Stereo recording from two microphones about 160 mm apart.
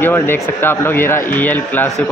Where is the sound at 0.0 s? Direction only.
15° left (ahead or behind).